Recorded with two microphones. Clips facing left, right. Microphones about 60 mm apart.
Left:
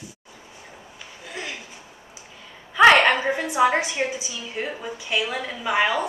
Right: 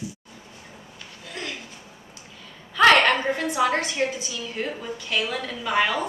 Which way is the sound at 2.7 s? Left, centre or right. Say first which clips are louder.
Left 2 dB; centre.